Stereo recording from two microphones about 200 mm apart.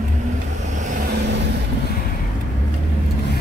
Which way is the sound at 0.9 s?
50° right (ahead or behind).